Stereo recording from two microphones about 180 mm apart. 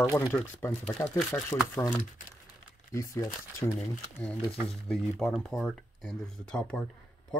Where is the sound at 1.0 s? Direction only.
15° left (ahead or behind).